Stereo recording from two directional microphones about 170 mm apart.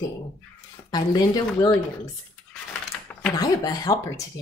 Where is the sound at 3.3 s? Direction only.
20° left (ahead or behind).